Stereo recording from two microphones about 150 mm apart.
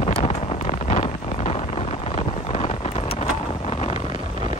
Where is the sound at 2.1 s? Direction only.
45° left (ahead or behind).